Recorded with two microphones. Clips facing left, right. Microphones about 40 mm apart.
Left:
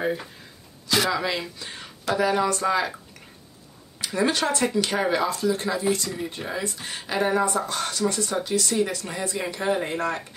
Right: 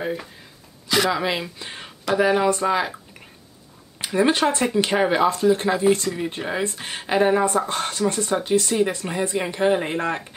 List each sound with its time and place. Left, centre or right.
1.1 s speech: centre
4.0 s speech: right